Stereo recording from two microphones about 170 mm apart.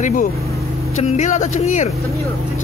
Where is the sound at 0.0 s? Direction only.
50° left (ahead or behind).